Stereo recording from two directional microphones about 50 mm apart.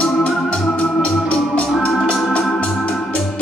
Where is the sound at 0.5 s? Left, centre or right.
Left.